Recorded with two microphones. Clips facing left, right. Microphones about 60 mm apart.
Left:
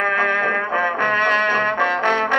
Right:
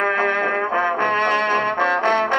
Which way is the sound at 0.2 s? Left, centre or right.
Left.